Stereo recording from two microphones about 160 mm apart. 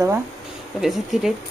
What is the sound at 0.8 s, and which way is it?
Speech, centre (ahead or behind).